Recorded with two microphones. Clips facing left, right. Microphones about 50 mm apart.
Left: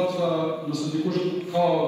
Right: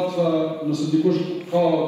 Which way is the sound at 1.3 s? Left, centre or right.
Right.